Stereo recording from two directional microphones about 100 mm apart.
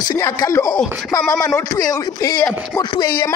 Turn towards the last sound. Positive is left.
turn(degrees=45)  # may be behind; listen again after turning